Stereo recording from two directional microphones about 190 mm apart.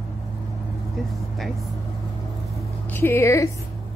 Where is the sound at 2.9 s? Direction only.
10° left (ahead or behind).